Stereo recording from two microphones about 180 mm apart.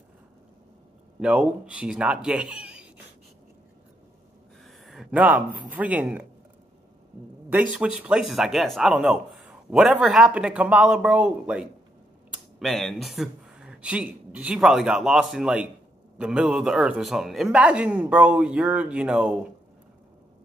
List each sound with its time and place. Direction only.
1.2 s speech: 5° right (ahead or behind)
4.6 s speech: centre (ahead or behind)
7.4 s a man's voice: 10° right (ahead or behind)